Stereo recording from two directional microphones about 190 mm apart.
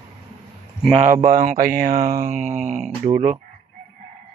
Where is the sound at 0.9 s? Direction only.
35° right (ahead or behind).